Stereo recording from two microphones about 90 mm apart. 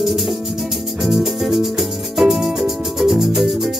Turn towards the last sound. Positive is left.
turn(degrees=-5)  # may be behind; listen again after turning